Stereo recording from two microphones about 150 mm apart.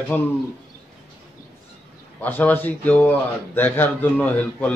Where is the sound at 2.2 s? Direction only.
10° left (ahead or behind).